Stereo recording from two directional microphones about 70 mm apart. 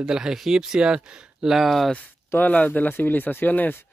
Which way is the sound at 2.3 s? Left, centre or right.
Left.